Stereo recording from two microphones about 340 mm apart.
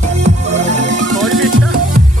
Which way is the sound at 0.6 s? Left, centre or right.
Right.